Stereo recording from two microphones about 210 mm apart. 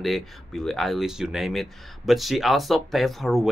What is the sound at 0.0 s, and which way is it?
Speech, centre (ahead or behind).